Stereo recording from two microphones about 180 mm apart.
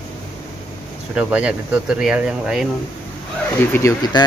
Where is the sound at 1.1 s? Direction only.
5° right (ahead or behind).